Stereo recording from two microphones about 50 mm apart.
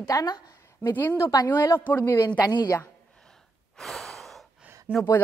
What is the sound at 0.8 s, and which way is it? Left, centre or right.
Speech, left.